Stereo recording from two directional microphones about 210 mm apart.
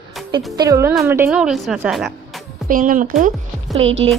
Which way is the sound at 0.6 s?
15° right (ahead or behind).